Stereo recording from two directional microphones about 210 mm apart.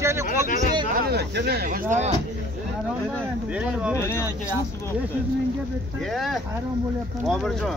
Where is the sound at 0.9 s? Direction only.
50° right (ahead or behind); by 2.1 s 35° right (ahead or behind).